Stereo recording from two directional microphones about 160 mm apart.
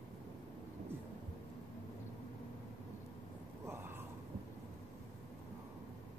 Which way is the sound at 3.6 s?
15° right (ahead or behind).